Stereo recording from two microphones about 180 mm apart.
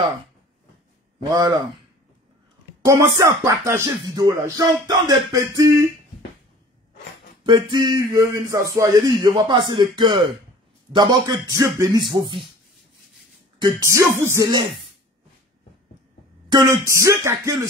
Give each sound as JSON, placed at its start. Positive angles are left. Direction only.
{"t": 2.8, "sound": "speech", "side_deg": -15}
{"t": 7.4, "sound": "speech", "side_deg": -25}
{"t": 13.6, "sound": "speech", "side_deg": -20}
{"t": 16.4, "sound": "speech", "side_deg": -20}